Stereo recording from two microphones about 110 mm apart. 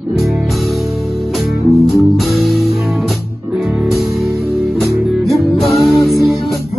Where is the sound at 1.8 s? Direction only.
Centre (ahead or behind).